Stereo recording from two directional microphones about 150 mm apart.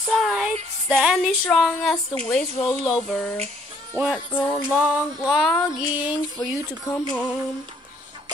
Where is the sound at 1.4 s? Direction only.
Centre (ahead or behind).